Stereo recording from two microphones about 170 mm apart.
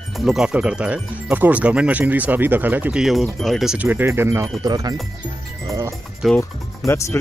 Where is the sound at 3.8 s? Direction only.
15° right (ahead or behind).